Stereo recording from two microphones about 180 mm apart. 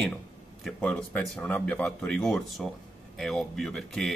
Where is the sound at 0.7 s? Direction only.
5° left (ahead or behind).